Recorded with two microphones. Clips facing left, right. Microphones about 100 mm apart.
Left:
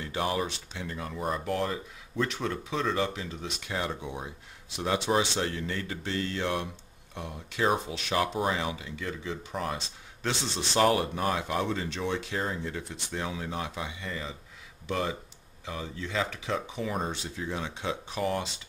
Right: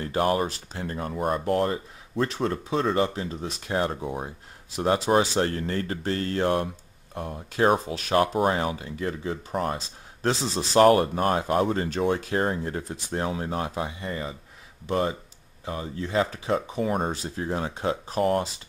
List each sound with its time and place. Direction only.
0.0 s speech: 45° right (ahead or behind)
10.9 s speech: 50° right (ahead or behind)